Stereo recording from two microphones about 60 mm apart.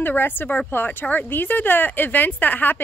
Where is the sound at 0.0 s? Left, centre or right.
Left.